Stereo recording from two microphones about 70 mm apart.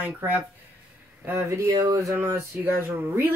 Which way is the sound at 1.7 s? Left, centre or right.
Right.